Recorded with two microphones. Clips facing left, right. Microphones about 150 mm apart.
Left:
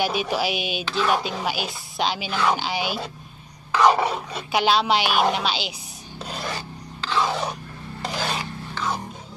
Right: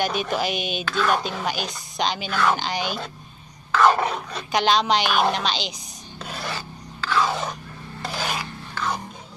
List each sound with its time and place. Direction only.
0.0 s speech: 5° left (ahead or behind)
6.3 s filing: 20° left (ahead or behind)
8.7 s music: 5° left (ahead or behind)